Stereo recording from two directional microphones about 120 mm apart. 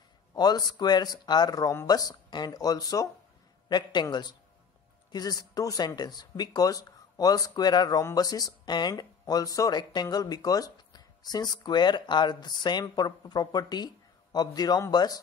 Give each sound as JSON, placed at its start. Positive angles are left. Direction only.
{"t": 0.3, "sound": "speech", "side_deg": 35}